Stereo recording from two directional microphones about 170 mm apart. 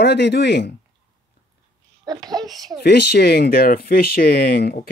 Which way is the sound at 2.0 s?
25° right (ahead or behind).